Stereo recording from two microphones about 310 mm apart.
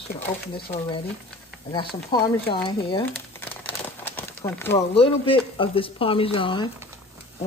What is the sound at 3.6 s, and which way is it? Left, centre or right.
Crumpling, centre.